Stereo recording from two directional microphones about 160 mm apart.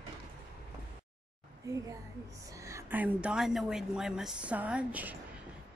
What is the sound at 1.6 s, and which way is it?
A woman's voice, 20° right (ahead or behind).